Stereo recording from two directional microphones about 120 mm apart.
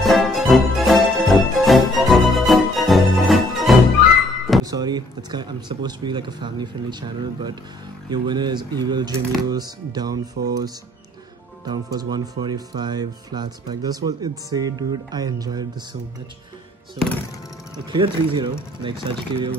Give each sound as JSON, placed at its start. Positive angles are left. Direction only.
{"t": 0.0, "sound": "music", "side_deg": 0}
{"t": 4.6, "sound": "speech", "side_deg": -35}
{"t": 17.8, "sound": "speech", "side_deg": -45}